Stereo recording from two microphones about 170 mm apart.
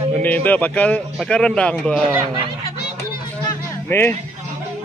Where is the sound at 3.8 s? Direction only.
10° left (ahead or behind).